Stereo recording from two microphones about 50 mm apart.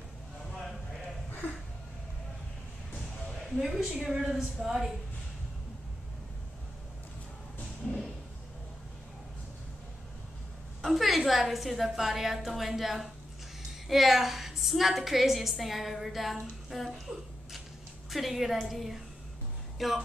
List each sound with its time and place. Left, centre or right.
0.5 s a sound: centre
3.4 s a woman's voice: centre
10.8 s a woman's voice: centre
18.1 s a woman's voice: centre